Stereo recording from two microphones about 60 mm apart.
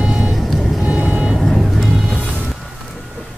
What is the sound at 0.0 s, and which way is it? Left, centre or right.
Vehicle, centre.